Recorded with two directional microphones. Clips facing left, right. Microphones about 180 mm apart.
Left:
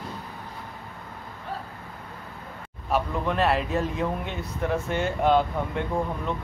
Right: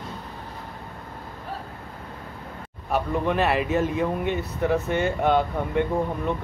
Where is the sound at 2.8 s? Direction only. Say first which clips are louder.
Right 2 dB; centre (ahead or behind).